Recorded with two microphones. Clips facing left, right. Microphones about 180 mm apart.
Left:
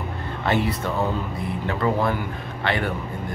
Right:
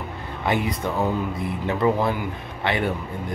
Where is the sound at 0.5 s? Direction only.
15° right (ahead or behind).